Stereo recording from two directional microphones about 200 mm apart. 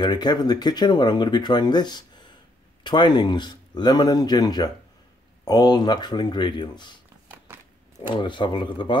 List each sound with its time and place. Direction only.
0.0 s speech: 20° left (ahead or behind)
8.1 s speech: 25° left (ahead or behind)